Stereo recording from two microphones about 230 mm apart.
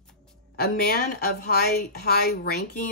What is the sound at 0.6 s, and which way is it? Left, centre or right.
Speech, left.